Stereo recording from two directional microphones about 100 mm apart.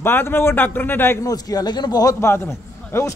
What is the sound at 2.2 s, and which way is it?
Speech, 25° left (ahead or behind).